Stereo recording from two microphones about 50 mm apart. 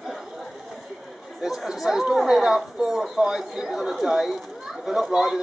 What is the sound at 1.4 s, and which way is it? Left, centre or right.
A child's voice, centre.